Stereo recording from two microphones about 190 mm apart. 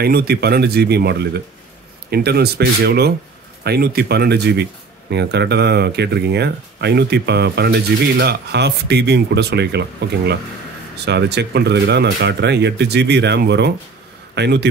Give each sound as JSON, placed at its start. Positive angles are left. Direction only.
{"t": 0.0, "sound": "a man's voice", "side_deg": -55}